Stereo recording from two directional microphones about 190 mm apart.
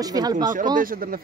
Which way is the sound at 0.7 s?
50° right (ahead or behind).